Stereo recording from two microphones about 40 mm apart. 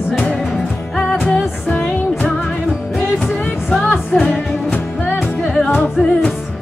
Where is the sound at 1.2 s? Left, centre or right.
Left.